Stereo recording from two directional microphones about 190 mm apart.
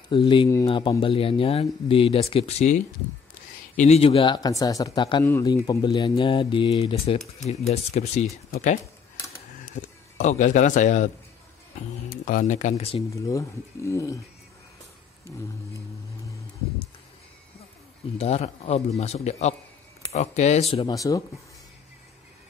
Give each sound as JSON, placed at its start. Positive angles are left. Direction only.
{"t": 0.1, "sound": "speech", "side_deg": 25}
{"t": 9.8, "sound": "speech", "side_deg": 40}
{"t": 12.1, "sound": "speech", "side_deg": 45}
{"t": 13.1, "sound": "speech", "side_deg": 15}
{"t": 18.1, "sound": "speech", "side_deg": 35}
{"t": 20.7, "sound": "speech", "side_deg": 20}